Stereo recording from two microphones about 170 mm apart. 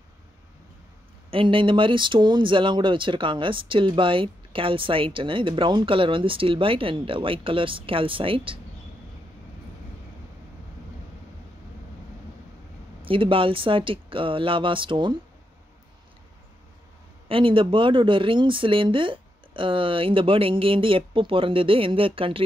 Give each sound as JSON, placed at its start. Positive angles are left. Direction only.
{"t": 1.3, "sound": "speech", "side_deg": -30}
{"t": 13.0, "sound": "speech", "side_deg": -30}
{"t": 17.3, "sound": "speech", "side_deg": -30}